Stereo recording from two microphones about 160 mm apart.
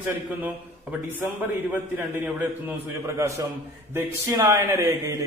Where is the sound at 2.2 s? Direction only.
10° right (ahead or behind).